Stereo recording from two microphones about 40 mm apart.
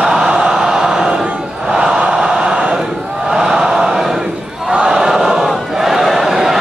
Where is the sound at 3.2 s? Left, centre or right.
Centre.